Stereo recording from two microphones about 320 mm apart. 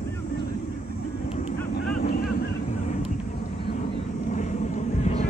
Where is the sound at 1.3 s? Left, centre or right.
Left.